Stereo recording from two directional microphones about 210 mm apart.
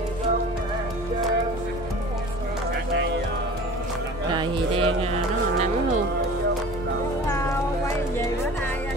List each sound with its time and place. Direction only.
4.3 s music: 20° right (ahead or behind)